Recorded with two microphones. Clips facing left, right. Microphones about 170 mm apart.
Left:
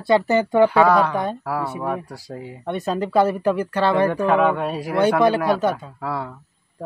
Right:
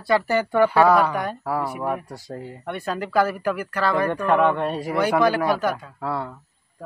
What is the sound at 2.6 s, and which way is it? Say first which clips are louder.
Speech: left 5 dB; 20° left (ahead or behind).